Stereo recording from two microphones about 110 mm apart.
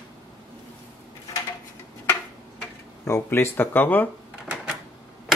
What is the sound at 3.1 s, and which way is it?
Speech, 20° left (ahead or behind).